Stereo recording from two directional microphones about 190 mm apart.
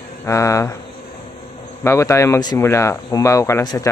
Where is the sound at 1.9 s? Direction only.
15° left (ahead or behind).